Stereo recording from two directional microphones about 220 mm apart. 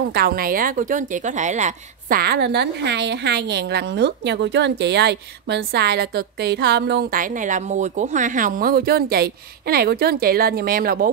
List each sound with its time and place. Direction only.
0.1 s a woman's voice: 45° right (ahead or behind)